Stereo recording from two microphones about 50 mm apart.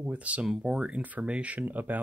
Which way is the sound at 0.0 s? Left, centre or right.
Right.